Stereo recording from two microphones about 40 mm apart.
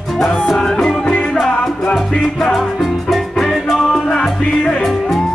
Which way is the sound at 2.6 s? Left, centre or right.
Centre.